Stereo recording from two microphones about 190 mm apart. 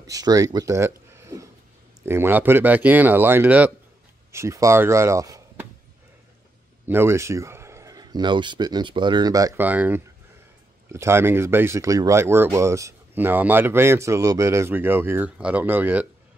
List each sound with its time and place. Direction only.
0.0 s speech: 20° right (ahead or behind)
6.9 s speech: 10° right (ahead or behind)